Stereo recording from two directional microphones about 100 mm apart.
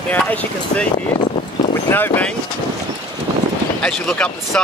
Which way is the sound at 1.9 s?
20° left (ahead or behind).